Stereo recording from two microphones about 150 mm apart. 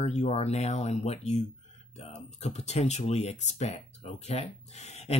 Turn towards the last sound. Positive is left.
turn(degrees=45)  # may be behind; listen again after turning